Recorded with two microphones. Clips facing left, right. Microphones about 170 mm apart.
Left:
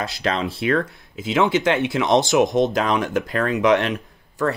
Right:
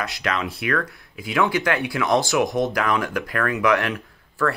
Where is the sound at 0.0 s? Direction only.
30° left (ahead or behind).